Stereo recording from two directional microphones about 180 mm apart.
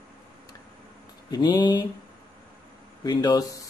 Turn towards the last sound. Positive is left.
turn(degrees=20)  # may be behind; listen again after turning